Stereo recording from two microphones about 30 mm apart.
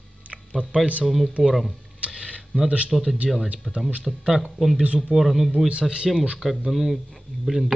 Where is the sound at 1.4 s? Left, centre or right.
Right.